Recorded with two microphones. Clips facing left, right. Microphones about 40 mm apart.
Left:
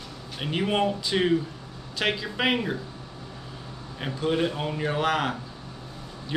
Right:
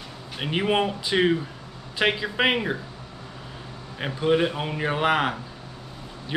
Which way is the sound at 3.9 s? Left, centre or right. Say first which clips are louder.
Right 4 dB; centre.